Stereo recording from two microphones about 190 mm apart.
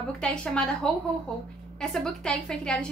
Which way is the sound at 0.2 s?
5° left (ahead or behind).